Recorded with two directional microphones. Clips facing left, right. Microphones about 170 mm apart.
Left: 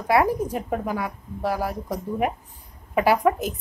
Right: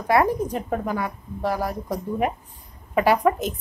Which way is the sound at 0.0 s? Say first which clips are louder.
Even; 10° left (ahead or behind).